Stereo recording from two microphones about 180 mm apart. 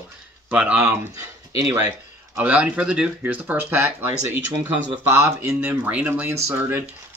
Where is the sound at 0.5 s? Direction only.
10° right (ahead or behind).